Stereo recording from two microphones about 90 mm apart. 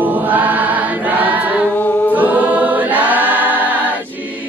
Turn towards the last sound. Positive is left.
turn(degrees=-20)  # may be behind; listen again after turning